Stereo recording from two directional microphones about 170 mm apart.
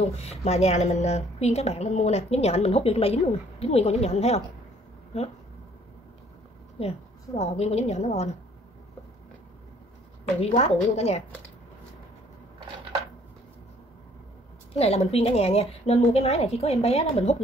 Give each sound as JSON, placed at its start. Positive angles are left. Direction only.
{"t": 0.0, "sound": "a woman's voice", "side_deg": 40}
{"t": 6.8, "sound": "a woman's voice", "side_deg": 40}
{"t": 10.4, "sound": "a woman's voice", "side_deg": 40}
{"t": 14.8, "sound": "a woman's voice", "side_deg": 40}